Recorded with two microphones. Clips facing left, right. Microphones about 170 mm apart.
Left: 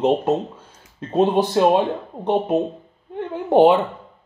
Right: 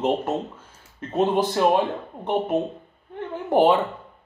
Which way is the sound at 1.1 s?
25° left (ahead or behind).